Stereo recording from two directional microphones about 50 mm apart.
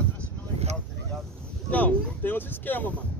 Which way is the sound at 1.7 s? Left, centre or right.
Left.